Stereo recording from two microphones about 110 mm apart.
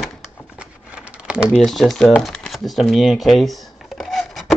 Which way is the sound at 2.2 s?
Centre (ahead or behind).